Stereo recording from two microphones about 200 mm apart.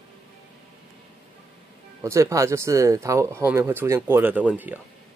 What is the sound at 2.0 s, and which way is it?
Speech, 15° right (ahead or behind).